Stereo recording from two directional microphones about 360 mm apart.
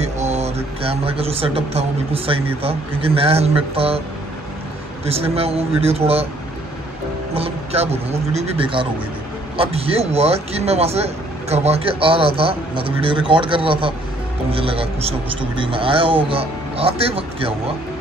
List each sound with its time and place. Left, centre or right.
0.0 s speech: centre
5.0 s speech: centre
7.3 s speech: centre